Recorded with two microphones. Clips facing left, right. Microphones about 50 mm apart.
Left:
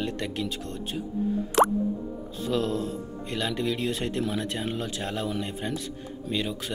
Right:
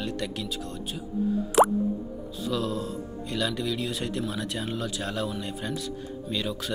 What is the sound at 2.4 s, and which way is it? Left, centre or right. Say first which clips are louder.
Speech: left 2 dB; left.